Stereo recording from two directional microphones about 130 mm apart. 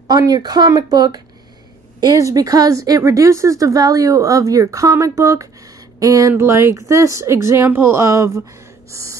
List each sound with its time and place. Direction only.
0.1 s speech: 30° right (ahead or behind)